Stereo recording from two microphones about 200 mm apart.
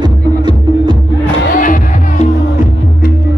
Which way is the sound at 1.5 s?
40° left (ahead or behind).